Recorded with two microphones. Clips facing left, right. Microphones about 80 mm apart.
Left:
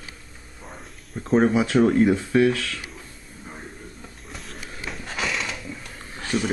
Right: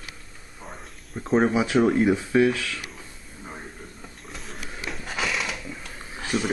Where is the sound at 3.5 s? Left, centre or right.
Centre.